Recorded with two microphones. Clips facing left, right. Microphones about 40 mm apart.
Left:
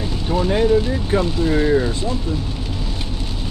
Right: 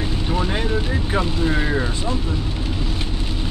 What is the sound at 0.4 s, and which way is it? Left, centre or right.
Speech, centre.